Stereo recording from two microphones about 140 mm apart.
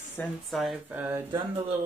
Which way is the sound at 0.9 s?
15° right (ahead or behind).